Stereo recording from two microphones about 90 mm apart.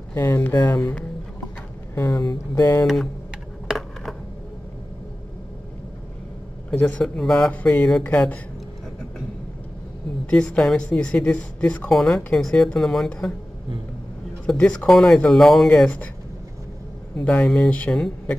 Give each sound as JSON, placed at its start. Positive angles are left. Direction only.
{"t": 0.1, "sound": "speech", "side_deg": 25}
{"t": 2.0, "sound": "speech", "side_deg": 40}
{"t": 6.7, "sound": "a man's voice", "side_deg": 20}
{"t": 7.0, "sound": "a woman's voice", "side_deg": 5}
{"t": 10.3, "sound": "a woman's voice", "side_deg": 10}
{"t": 11.9, "sound": "speech", "side_deg": 0}
{"t": 14.4, "sound": "a woman's voice", "side_deg": 10}
{"t": 17.2, "sound": "a woman's voice", "side_deg": 15}